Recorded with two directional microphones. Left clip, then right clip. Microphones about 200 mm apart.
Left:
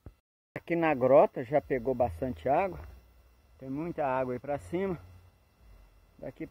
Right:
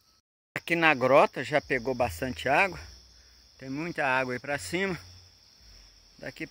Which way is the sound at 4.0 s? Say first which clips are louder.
Right 4 dB; 70° right (ahead or behind).